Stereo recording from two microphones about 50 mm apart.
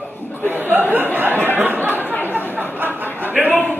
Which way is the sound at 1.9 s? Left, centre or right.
Left.